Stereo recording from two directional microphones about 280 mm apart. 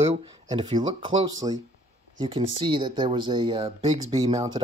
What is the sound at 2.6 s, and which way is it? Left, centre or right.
Speech, centre.